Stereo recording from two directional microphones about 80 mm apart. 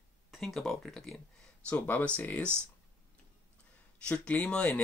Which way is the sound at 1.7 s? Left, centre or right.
Centre.